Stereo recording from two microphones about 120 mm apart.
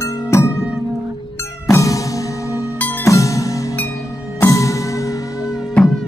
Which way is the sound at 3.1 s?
25° left (ahead or behind).